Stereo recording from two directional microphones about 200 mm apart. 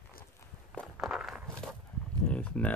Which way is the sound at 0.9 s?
Centre (ahead or behind).